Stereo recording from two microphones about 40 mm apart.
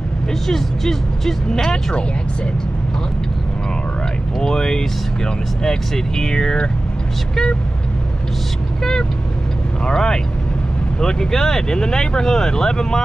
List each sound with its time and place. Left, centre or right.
0.3 s speech: centre
4.4 s speech: centre
9.8 s speech: centre